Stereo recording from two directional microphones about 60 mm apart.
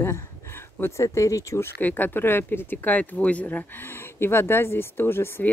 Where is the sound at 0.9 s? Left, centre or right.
Left.